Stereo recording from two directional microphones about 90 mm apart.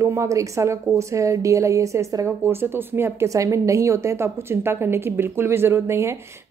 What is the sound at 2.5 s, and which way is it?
A woman's voice, 25° right (ahead or behind).